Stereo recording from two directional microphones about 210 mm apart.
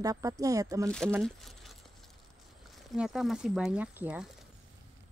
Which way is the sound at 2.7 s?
Centre (ahead or behind).